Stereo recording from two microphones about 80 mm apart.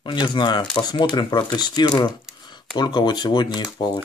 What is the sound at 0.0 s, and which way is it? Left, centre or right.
Speech, left.